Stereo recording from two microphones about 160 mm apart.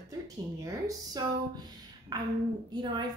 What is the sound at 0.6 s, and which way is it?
Speech, 20° right (ahead or behind).